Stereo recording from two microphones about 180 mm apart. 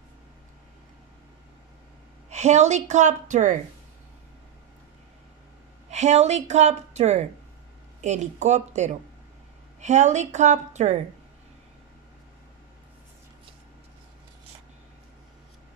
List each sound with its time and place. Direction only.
2.2 s a woman's voice: 40° right (ahead or behind)
5.9 s a woman's voice: 40° right (ahead or behind)